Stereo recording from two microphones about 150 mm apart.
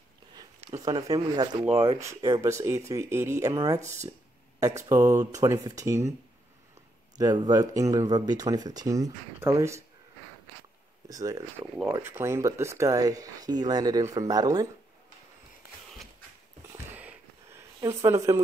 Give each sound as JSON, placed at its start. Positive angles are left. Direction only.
{"t": 0.7, "sound": "speech", "side_deg": -25}
{"t": 3.8, "sound": "speech", "side_deg": -50}
{"t": 4.6, "sound": "speech", "side_deg": -20}
{"t": 7.2, "sound": "speech", "side_deg": -25}
{"t": 11.1, "sound": "speech", "side_deg": -25}
{"t": 16.9, "sound": "a sound", "side_deg": -15}
{"t": 17.7, "sound": "speech", "side_deg": -20}